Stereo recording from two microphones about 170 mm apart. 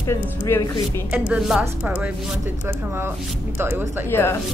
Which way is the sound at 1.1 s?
5° right (ahead or behind).